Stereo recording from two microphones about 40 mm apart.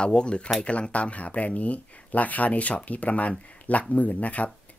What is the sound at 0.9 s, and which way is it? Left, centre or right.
Speech, left.